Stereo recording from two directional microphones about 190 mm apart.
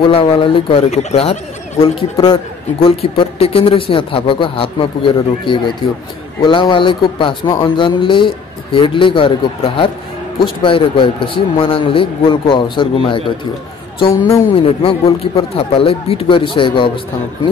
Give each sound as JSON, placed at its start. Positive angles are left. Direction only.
{"t": 0.0, "sound": "speech", "side_deg": 30}
{"t": 10.4, "sound": "a woman's voice", "side_deg": 25}